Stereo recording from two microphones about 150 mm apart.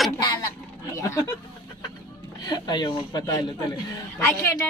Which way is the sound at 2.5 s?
30° left (ahead or behind).